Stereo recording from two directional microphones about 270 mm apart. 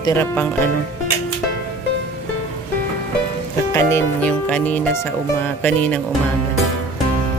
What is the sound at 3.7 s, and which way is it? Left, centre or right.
Speech, centre.